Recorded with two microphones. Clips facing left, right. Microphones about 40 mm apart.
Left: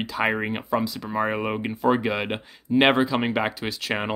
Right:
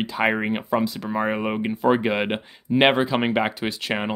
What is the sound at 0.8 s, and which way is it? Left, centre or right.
Speech, right.